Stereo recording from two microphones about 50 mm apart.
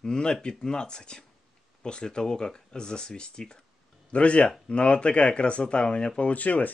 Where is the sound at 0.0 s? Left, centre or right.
Centre.